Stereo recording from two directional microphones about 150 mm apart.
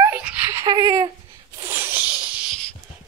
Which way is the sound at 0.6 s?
25° right (ahead or behind).